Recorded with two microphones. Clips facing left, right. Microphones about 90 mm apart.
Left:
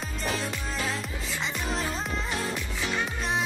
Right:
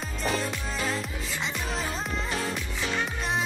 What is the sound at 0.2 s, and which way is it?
Music, centre (ahead or behind).